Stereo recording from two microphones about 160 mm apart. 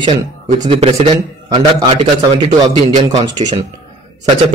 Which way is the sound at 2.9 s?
25° right (ahead or behind).